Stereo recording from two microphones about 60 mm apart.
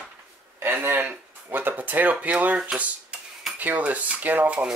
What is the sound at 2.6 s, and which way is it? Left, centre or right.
Cutlery, centre.